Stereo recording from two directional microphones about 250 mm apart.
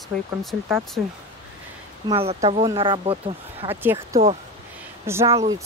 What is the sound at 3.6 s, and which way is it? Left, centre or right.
Speech, centre.